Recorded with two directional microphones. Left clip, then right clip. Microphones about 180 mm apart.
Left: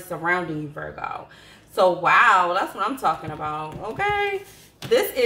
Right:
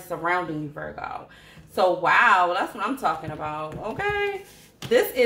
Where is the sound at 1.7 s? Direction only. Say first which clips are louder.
Left 2 dB; 30° right (ahead or behind).